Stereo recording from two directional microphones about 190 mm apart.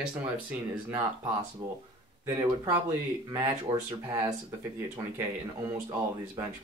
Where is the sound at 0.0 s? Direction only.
10° right (ahead or behind).